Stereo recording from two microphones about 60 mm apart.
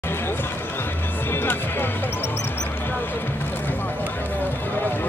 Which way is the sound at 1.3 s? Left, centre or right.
Left.